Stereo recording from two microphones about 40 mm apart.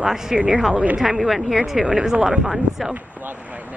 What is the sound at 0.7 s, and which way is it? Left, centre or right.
Speech, right.